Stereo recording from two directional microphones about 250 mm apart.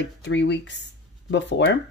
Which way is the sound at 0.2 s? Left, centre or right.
Left.